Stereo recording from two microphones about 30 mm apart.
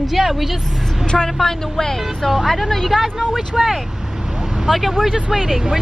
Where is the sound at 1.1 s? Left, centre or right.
Centre.